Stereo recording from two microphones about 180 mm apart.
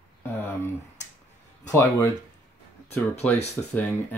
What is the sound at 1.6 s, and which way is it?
Speech, 20° left (ahead or behind).